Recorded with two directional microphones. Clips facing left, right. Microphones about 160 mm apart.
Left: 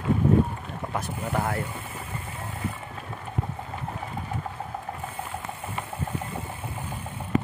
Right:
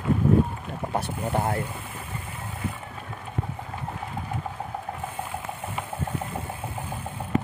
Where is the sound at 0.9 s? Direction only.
30° right (ahead or behind).